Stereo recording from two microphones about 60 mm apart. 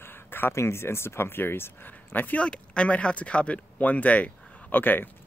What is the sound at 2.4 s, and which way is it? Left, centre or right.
Speech, centre.